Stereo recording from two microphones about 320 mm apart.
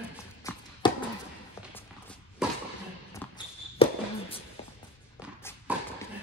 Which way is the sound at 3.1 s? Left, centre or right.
Centre.